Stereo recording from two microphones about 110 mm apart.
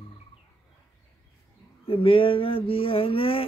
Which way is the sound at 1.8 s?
55° left (ahead or behind).